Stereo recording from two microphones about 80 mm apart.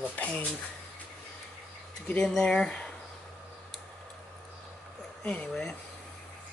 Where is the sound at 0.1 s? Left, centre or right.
Centre.